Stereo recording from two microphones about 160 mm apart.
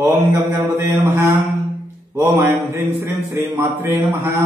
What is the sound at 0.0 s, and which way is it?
Mantra, 20° right (ahead or behind).